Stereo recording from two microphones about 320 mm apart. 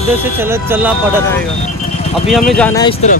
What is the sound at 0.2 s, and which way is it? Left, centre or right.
Speech, centre.